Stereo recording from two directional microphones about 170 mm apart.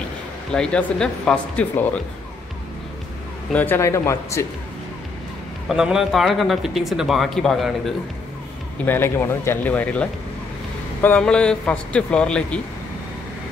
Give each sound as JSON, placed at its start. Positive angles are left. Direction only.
{"t": 0.5, "sound": "speech", "side_deg": 5}
{"t": 3.5, "sound": "speech", "side_deg": 10}
{"t": 5.7, "sound": "speech", "side_deg": -5}
{"t": 8.8, "sound": "speech", "side_deg": 15}